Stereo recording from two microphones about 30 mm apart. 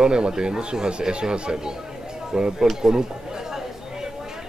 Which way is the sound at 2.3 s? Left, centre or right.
Right.